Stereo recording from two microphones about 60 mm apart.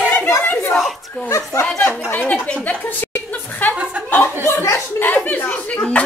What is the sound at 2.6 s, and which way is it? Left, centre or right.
Chuckle, left.